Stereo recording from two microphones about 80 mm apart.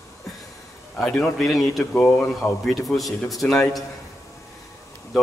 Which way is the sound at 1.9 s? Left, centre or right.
Left.